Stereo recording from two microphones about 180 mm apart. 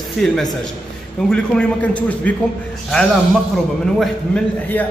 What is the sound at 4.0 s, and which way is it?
Speech, 5° left (ahead or behind).